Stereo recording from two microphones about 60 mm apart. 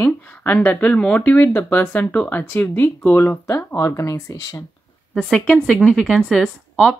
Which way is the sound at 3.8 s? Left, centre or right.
Left.